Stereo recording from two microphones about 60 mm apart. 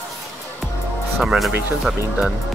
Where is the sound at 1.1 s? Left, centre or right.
Centre.